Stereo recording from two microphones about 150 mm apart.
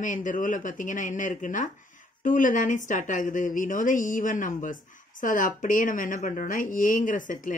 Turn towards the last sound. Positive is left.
turn(degrees=60)  # may be behind; listen again after turning